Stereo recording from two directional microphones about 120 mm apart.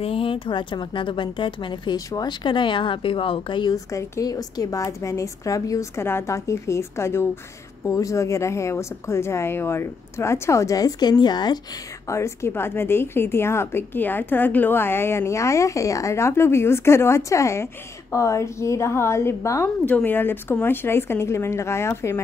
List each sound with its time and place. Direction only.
0.0 s speech: 50° left (ahead or behind)
3.7 s a woman's voice: 30° left (ahead or behind)
12.1 s a woman's voice: 25° left (ahead or behind)